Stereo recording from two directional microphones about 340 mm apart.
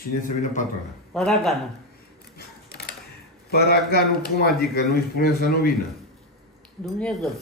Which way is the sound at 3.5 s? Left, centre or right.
Left.